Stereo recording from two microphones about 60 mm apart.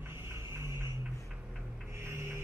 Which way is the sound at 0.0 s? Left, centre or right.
Right.